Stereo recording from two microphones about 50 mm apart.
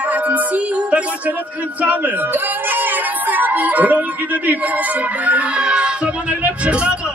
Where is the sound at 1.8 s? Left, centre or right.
Right.